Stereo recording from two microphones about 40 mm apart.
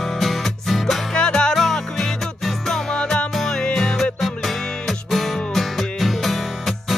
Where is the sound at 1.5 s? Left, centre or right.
Centre.